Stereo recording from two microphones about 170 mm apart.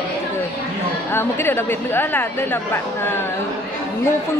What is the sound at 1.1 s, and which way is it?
A woman's voice, 15° left (ahead or behind).